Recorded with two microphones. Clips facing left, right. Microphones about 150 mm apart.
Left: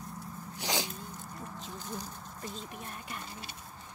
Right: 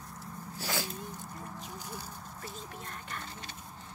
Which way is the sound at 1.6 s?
10° right (ahead or behind).